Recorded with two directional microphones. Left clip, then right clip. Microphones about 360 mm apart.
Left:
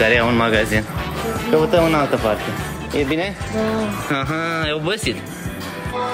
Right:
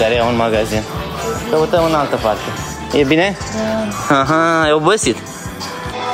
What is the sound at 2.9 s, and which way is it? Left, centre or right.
Speech, right.